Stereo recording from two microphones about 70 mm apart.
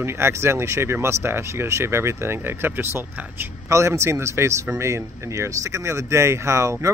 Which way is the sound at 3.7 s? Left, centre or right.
Right.